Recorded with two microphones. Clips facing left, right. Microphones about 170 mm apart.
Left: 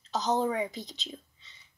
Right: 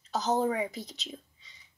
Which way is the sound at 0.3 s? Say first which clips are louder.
Even; 5° right (ahead or behind).